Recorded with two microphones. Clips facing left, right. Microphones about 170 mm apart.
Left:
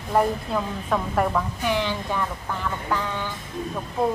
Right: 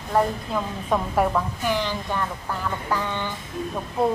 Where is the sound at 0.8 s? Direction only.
10° right (ahead or behind).